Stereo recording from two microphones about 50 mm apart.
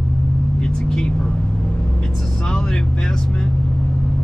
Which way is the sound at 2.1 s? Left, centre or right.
Centre.